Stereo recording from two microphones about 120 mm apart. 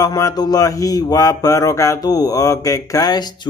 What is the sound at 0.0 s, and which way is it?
Speech, 30° left (ahead or behind).